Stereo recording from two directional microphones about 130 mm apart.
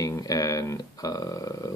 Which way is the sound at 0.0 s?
25° left (ahead or behind).